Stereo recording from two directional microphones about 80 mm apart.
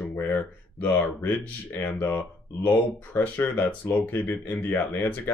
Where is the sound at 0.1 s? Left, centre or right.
Left.